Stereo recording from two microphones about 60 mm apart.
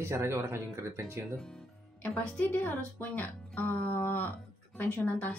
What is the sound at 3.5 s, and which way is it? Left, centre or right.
Music, left.